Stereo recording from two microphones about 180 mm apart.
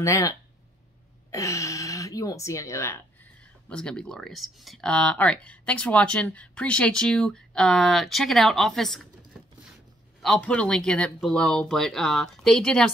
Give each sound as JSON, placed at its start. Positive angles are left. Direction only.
{"t": 0.0, "sound": "speech", "side_deg": 15}
{"t": 10.2, "sound": "speech", "side_deg": 5}